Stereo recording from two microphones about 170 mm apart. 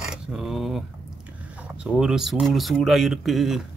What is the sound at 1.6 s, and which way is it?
Speech, 5° right (ahead or behind).